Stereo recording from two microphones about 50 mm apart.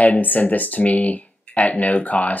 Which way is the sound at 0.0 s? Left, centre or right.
Left.